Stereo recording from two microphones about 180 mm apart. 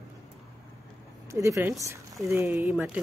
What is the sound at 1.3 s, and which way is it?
Speech, 15° right (ahead or behind).